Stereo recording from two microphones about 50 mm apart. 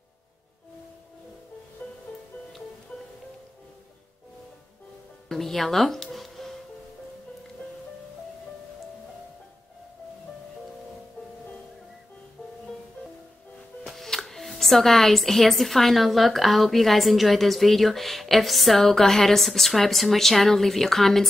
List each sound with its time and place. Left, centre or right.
1.8 s music: left
5.3 s speech: centre
6.1 s music: centre
13.8 s speech: centre